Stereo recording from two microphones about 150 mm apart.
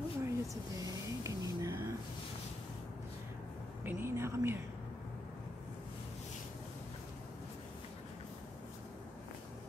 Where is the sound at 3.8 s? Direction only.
15° right (ahead or behind).